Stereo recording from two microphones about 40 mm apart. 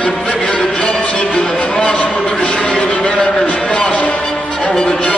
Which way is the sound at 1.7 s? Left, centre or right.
Left.